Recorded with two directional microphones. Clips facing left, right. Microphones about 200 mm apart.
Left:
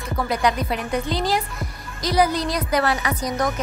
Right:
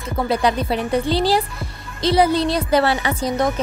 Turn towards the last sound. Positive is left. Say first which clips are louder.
# right 4 dB
turn(degrees=-25)  # may be behind; listen again after turning